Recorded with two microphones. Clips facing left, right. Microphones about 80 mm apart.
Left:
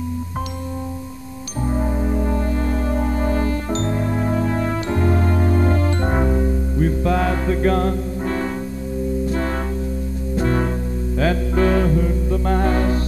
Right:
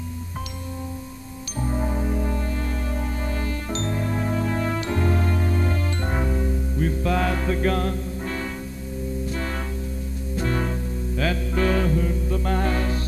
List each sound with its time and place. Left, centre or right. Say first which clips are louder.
1.6 s music: left 4 dB; centre; by 3.5 s left
3.7 s music: left 5 dB; left
10.3 s music: left 5 dB; left